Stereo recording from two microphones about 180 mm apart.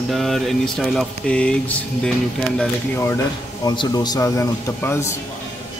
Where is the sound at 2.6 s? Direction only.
10° left (ahead or behind).